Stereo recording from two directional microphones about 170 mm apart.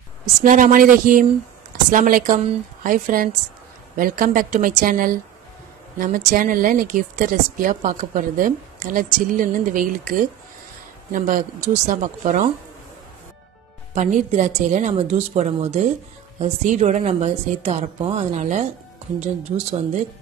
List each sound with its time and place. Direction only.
0.5 s speech: 50° right (ahead or behind)
13.9 s a woman's voice: 45° right (ahead or behind)